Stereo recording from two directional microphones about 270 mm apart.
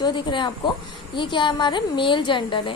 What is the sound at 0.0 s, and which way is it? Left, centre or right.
A woman's voice, centre.